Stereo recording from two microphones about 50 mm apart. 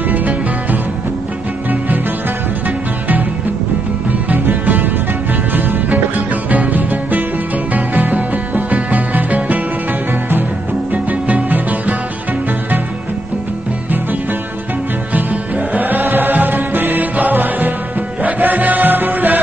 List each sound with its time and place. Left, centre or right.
0.1 s music: right
4.1 s music: right
10.9 s music: right
15.7 s music: right